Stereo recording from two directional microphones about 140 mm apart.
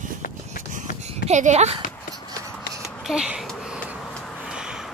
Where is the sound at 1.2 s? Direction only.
55° right (ahead or behind).